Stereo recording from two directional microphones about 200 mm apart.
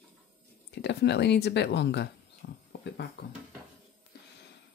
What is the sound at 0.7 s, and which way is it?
Speech, 55° left (ahead or behind).